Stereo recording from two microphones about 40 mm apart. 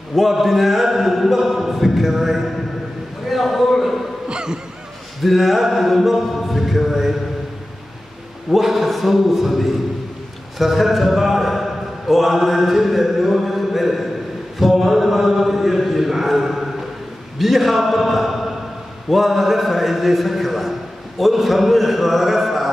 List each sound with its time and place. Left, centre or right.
0.1 s a man's voice: centre
4.3 s music: right
5.2 s a man's voice: centre
8.5 s a man's voice: centre
14.6 s chant: centre
17.4 s a man's voice: centre